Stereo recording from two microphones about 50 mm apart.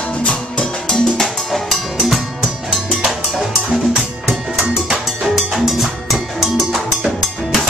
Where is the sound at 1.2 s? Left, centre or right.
Centre.